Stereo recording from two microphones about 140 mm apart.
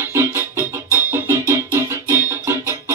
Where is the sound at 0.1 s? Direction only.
20° right (ahead or behind).